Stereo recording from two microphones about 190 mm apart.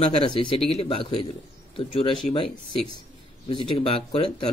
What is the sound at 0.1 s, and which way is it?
Speech, 30° left (ahead or behind).